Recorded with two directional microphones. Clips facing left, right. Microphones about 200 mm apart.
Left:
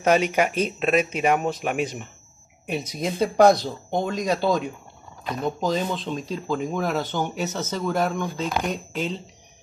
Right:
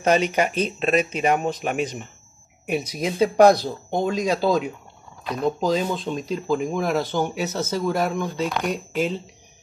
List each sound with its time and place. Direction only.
0.0 s speech: 5° left (ahead or behind)